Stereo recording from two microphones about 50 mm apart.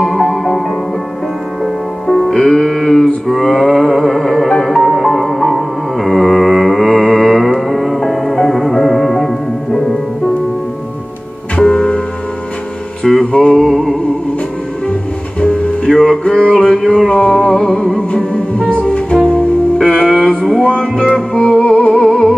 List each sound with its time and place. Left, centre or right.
0.0 s music: centre
11.5 s music: centre
13.2 s music: centre
13.6 s music: centre
15.4 s music: left
15.9 s a sound: centre
17.1 s music: centre